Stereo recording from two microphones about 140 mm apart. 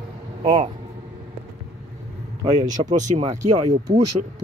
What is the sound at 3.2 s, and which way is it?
Speech, 50° right (ahead or behind).